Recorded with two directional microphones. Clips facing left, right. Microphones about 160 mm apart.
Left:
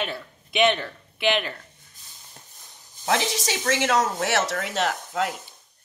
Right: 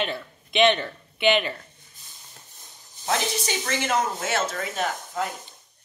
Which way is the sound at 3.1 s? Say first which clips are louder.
Left 2 dB; 90° left.